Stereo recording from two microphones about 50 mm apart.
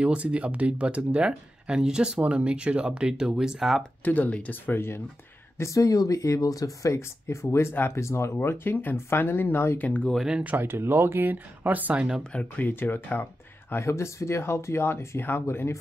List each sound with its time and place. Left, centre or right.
0.0 s speech: right
4.0 s speech: left
4.7 s speech: left
5.6 s speech: left
7.7 s speech: left
8.0 s speech: left
8.9 s speech: left
9.8 s speech: left
10.6 s speech: right
12.2 s speech: centre
12.5 s speech: left
13.1 s a sound: left
13.7 s speech: left